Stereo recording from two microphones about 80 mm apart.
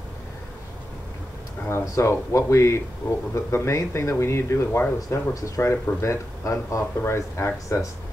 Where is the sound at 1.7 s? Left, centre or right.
Left.